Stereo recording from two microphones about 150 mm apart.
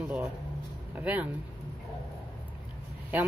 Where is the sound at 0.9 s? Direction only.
10° right (ahead or behind).